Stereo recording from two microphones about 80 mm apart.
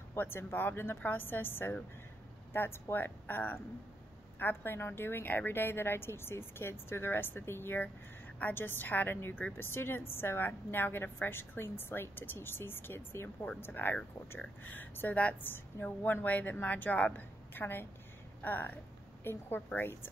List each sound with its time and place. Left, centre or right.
0.1 s a woman's voice: left